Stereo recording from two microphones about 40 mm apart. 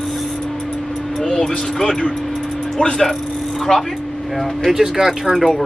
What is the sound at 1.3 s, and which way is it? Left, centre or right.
Speech, centre.